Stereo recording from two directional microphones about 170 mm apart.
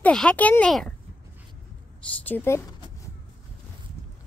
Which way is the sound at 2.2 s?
15° left (ahead or behind).